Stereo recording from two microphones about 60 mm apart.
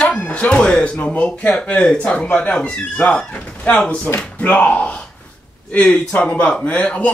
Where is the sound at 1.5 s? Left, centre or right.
Centre.